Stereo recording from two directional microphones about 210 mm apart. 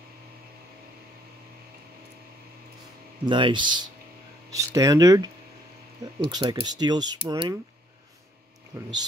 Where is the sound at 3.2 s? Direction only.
25° right (ahead or behind).